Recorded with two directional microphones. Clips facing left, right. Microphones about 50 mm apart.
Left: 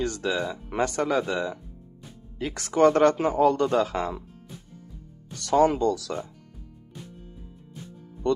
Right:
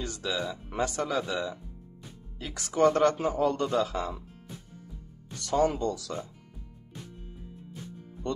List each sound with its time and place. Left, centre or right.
0.0 s speech: left
2.6 s speech: left
3.2 s a man's voice: left
3.7 s speech: left
5.4 s speech: left